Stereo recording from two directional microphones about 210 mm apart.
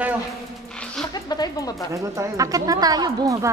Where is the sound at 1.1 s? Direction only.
20° left (ahead or behind).